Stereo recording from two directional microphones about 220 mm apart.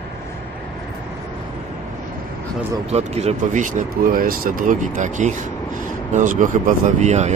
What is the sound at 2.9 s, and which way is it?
Speech, 30° right (ahead or behind).